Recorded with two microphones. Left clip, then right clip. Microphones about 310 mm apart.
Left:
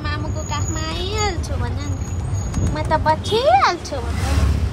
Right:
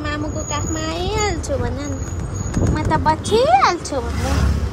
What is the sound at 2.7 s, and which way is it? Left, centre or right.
Speech, centre.